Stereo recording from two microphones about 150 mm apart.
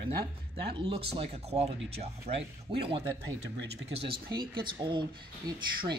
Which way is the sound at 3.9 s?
40° right (ahead or behind).